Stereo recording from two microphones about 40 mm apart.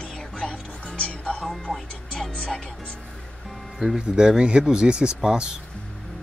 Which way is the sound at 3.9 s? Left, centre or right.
Right.